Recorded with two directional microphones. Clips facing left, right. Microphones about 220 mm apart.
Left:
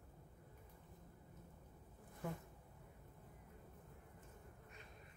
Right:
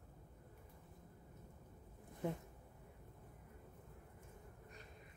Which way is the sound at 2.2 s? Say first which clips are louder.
Right 5 dB; 20° right (ahead or behind).